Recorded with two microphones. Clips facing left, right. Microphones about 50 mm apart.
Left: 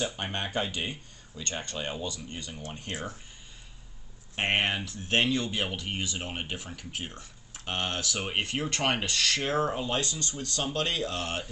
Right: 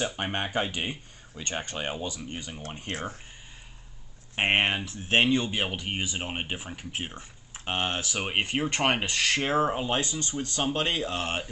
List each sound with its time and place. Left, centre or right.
0.0 s speech: right
4.4 s speech: right